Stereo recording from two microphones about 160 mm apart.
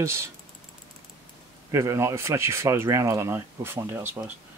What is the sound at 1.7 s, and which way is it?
Speech, 20° right (ahead or behind).